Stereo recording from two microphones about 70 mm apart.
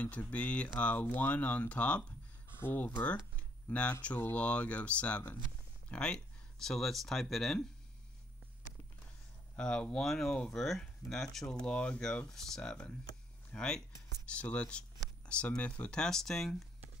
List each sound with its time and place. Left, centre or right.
0.0 s speech: left
2.4 s a sound: left
3.0 s speech: centre
9.6 s speech: centre
11.6 s speech: centre